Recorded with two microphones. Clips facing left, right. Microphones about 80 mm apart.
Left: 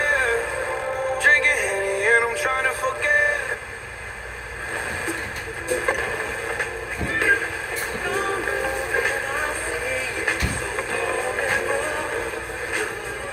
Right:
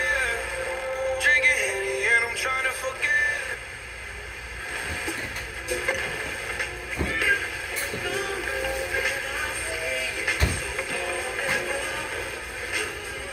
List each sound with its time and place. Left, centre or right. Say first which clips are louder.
0.0 s music: left 5 dB; left
5.7 s music: left 5 dB; left